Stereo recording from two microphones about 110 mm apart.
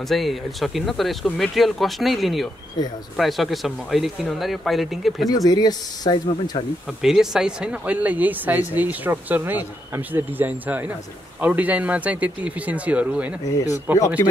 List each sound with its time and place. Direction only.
0.1 s speech: centre (ahead or behind)
5.3 s speech: 35° left (ahead or behind)
7.0 s speech: 5° right (ahead or behind)